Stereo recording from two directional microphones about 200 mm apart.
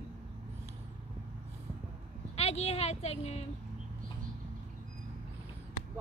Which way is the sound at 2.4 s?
30° left (ahead or behind).